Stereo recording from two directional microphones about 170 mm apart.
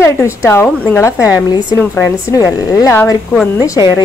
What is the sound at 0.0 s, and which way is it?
A woman's voice, 15° left (ahead or behind).